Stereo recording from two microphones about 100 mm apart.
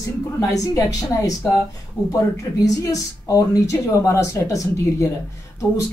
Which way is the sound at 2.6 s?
35° left (ahead or behind).